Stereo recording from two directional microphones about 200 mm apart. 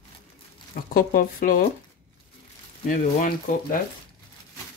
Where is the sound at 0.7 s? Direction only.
45° left (ahead or behind).